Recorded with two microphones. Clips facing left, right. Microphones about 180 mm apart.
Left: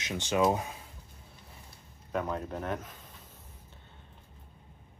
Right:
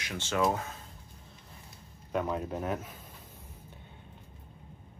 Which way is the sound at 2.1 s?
5° right (ahead or behind).